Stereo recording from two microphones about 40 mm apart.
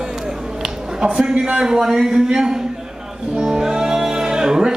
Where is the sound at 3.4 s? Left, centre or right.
Centre.